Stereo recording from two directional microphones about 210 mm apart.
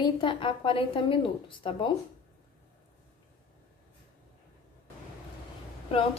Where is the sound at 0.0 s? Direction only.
25° left (ahead or behind).